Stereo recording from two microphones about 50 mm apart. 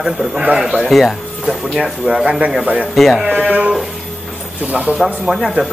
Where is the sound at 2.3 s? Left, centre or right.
Right.